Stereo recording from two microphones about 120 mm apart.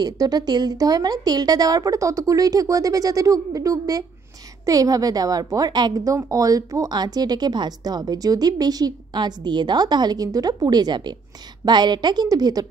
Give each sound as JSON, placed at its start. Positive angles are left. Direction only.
{"t": 0.0, "sound": "a woman's voice", "side_deg": -35}